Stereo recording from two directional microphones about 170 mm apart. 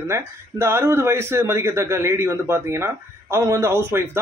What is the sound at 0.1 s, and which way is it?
Speech, 15° right (ahead or behind).